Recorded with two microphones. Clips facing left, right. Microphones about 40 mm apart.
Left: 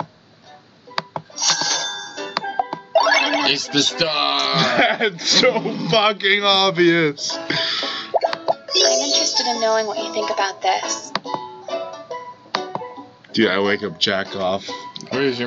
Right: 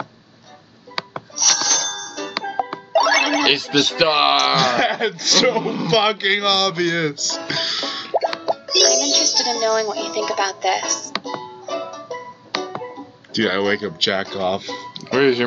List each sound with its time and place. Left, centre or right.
1.3 s music: centre
2.9 s a sound: centre
3.4 s a man's voice: centre
4.6 s speech: centre
5.6 s a man's voice: centre
5.9 s speech: centre
8.1 s plop: centre
8.6 s speech: centre
11.6 s music: centre
12.7 s music: centre
13.3 s speech: centre